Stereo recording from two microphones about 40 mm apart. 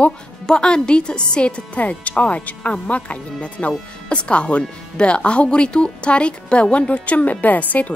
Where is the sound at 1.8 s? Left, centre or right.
Left.